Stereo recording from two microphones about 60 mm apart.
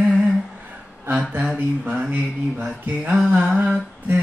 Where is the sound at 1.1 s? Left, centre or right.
Right.